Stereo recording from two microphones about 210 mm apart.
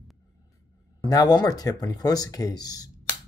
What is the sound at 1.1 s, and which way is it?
Speech, 20° left (ahead or behind).